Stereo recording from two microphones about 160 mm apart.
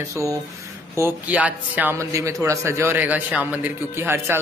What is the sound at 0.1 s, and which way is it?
Speech, 20° right (ahead or behind).